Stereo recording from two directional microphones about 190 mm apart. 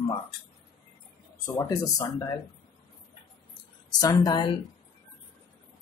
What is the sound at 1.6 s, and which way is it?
Speech, 20° left (ahead or behind).